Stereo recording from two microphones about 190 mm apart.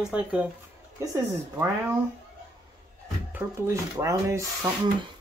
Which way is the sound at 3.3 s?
15° right (ahead or behind).